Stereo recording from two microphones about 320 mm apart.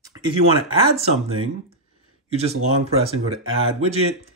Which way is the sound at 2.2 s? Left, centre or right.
Centre.